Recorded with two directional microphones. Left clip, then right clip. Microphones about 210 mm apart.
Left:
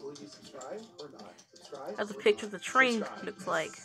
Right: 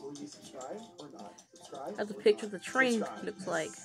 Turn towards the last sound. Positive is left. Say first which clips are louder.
# left 2 dB
turn(degrees=-10)  # may be behind; listen again after turning